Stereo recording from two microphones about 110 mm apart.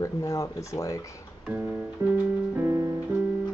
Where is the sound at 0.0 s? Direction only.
30° left (ahead or behind).